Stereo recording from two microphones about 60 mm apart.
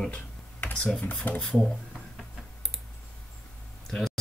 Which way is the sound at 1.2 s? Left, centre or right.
Left.